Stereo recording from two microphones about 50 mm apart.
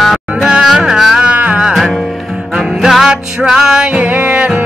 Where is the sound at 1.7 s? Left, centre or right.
Centre.